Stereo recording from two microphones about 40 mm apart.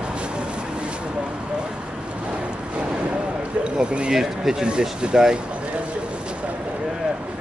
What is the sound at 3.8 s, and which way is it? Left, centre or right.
Speech, right.